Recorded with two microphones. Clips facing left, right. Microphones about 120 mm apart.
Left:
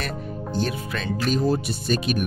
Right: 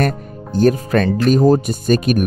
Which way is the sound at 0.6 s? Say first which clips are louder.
Right 14 dB; 50° right (ahead or behind).